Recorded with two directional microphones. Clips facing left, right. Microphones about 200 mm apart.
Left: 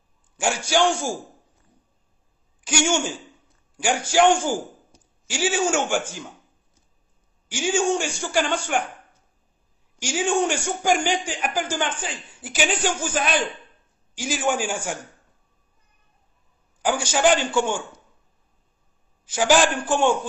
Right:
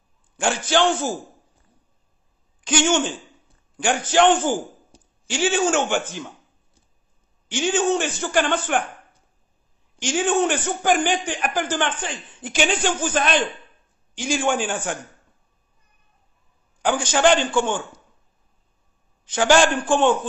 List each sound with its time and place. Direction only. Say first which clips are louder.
0.4 s a man's voice: right 1 dB; 10° left (ahead or behind)
2.6 s a man's voice: right 3 dB; 10° left (ahead or behind)
7.4 s a man's voice: right 1 dB; 10° left (ahead or behind)
9.9 s a man's voice: right 2 dB; 10° left (ahead or behind)
16.8 s a man's voice: right 2 dB; 10° left (ahead or behind)
19.2 s a man's voice: right 2 dB; 5° left (ahead or behind)